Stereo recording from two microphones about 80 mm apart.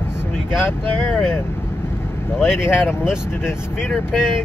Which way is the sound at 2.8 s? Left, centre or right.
Centre.